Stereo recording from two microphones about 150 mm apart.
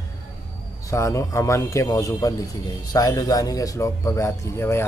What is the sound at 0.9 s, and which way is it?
Speech, 20° left (ahead or behind).